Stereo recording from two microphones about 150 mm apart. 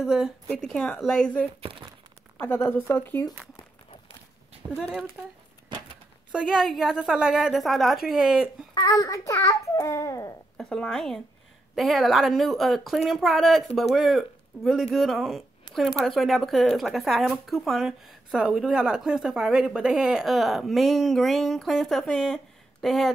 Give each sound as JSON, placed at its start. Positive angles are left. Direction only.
{"t": 0.0, "sound": "speech", "side_deg": -5}
{"t": 1.6, "sound": "speech", "side_deg": -35}
{"t": 2.3, "sound": "a woman's voice", "side_deg": 15}
{"t": 4.6, "sound": "speech", "side_deg": -30}
{"t": 6.3, "sound": "speech", "side_deg": 0}
{"t": 8.7, "sound": "a child's voice", "side_deg": 25}
{"t": 10.6, "sound": "speech", "side_deg": 5}